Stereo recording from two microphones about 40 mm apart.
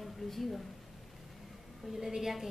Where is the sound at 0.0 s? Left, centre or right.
Centre.